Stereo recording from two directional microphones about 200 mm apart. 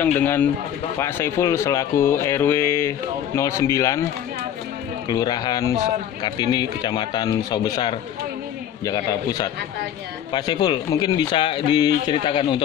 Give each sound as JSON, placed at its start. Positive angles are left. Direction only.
{"t": 0.2, "sound": "speech", "side_deg": 10}
{"t": 5.0, "sound": "speech", "side_deg": 20}